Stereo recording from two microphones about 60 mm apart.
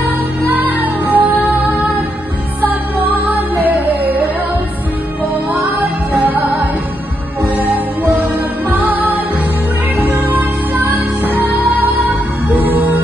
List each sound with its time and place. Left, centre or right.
1.0 s music: right
5.5 s music: right
7.5 s music: right